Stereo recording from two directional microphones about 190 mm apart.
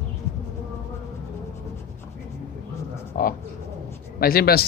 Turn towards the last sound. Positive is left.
turn(degrees=55)  # may be behind; listen again after turning